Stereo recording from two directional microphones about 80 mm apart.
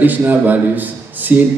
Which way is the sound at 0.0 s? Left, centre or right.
Right.